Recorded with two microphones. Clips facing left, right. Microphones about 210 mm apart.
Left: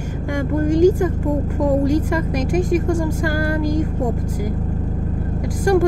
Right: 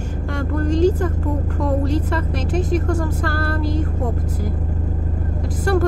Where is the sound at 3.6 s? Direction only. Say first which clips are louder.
Left 3 dB; 40° left (ahead or behind).